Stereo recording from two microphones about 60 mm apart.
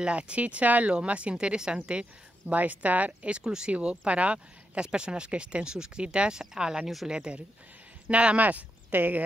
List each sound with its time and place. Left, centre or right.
0.0 s speech: centre
2.4 s speech: right